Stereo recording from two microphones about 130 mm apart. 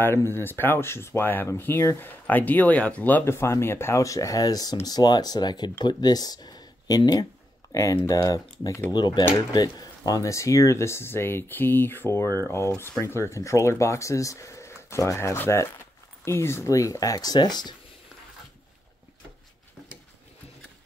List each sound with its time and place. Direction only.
0.0 s speech: 20° left (ahead or behind); by 17.7 s 35° left (ahead or behind)